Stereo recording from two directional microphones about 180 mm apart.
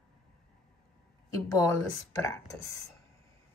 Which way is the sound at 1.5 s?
15° left (ahead or behind).